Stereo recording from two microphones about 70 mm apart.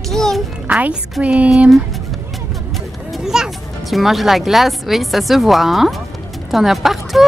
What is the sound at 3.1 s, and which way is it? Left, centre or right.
Speech, centre.